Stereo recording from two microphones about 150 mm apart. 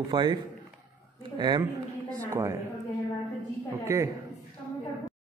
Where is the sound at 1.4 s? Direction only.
30° right (ahead or behind).